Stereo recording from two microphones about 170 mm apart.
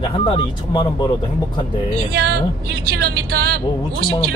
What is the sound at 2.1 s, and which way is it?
A man's voice, 65° right (ahead or behind).